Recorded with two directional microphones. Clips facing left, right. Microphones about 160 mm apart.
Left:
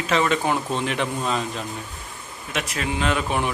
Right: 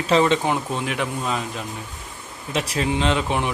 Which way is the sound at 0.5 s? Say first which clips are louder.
Even; 10° right (ahead or behind).